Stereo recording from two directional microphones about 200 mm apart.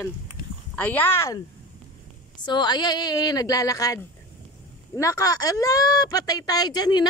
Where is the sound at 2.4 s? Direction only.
20° left (ahead or behind).